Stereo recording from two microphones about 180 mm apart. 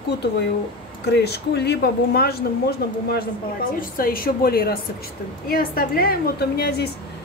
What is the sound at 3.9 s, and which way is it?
A woman's voice, 55° left (ahead or behind).